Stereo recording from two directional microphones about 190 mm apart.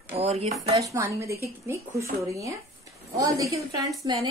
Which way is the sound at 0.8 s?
15° right (ahead or behind).